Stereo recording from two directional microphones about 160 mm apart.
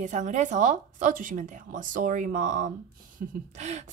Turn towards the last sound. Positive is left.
turn(degrees=-45)  # may be behind; listen again after turning